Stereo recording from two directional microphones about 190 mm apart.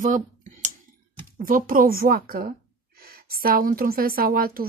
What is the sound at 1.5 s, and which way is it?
Speech, 45° right (ahead or behind).